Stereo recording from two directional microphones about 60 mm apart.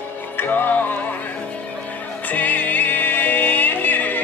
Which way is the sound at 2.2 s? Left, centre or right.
Left.